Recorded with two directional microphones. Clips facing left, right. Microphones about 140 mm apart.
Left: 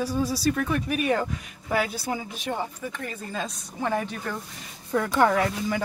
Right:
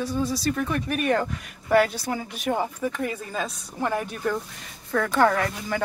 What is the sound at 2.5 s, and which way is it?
Speech, 10° right (ahead or behind).